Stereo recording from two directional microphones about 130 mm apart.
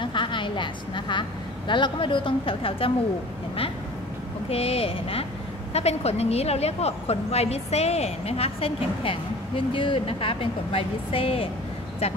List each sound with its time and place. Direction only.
0.0 s a sound: 40° left (ahead or behind)
1.7 s a woman's voice: 40° left (ahead or behind)
4.5 s a woman's voice: 50° left (ahead or behind)